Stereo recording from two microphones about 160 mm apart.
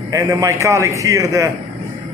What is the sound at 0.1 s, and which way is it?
A man's voice, 20° right (ahead or behind).